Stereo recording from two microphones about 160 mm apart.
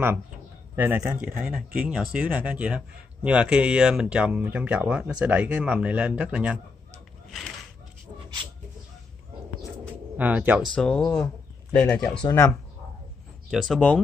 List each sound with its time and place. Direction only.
0.7 s speech: 15° right (ahead or behind)
10.1 s speech: 10° right (ahead or behind)
10.7 s speech: 5° left (ahead or behind)
12.1 s speech: 30° left (ahead or behind)
13.5 s speech: centre (ahead or behind)